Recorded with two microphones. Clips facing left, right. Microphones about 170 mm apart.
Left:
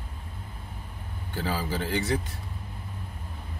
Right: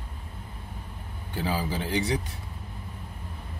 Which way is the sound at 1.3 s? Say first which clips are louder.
Right 1 dB; 15° right (ahead or behind).